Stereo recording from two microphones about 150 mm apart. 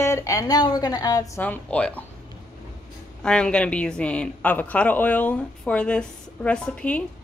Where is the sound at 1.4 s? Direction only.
10° left (ahead or behind).